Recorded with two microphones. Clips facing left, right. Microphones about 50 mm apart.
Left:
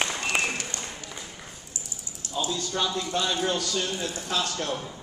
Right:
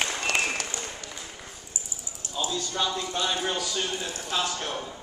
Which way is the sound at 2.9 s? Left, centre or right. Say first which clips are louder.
Left 1 dB; centre.